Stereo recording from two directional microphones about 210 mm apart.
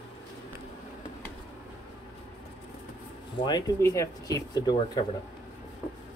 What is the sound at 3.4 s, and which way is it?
Speech, 15° left (ahead or behind).